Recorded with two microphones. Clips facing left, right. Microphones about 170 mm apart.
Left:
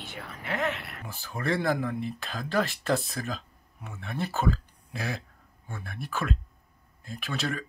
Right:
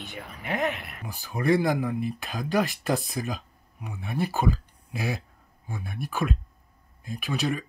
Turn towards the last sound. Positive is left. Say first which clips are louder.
# right 4 dB
turn(degrees=-15)  # may be behind; listen again after turning